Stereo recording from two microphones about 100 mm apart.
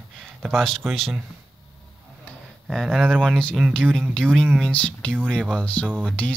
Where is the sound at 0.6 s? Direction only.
5° left (ahead or behind).